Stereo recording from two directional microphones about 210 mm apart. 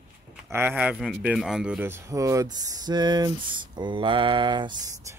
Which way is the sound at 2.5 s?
20° right (ahead or behind).